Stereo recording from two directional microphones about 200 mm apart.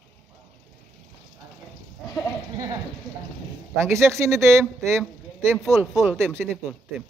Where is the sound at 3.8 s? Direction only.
15° right (ahead or behind).